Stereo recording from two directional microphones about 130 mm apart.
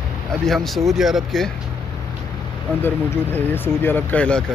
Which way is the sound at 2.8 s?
15° left (ahead or behind).